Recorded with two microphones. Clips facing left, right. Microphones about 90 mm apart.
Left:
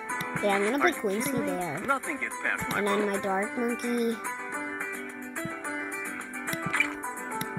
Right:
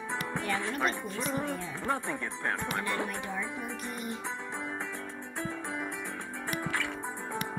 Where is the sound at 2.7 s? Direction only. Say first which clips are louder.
Left 6 dB; 60° left (ahead or behind).